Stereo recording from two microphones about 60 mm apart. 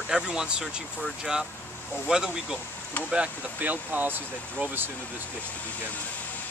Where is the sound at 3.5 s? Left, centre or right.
Right.